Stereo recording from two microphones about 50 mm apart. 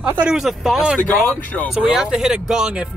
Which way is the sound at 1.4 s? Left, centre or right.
Left.